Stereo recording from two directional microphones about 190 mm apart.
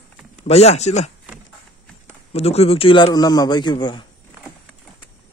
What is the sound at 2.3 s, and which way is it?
A man's voice, 35° left (ahead or behind).